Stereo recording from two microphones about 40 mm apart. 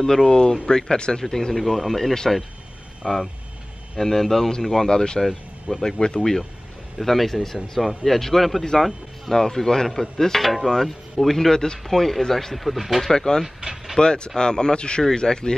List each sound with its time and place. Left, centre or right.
0.3 s speech: centre
1.5 s speech: centre
4.8 s speech: centre
5.2 s speech: centre
7.0 s speech: centre
9.3 s speech: centre
13.1 s speech: centre